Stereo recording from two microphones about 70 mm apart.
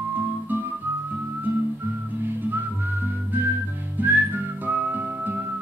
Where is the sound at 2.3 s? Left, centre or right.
Right.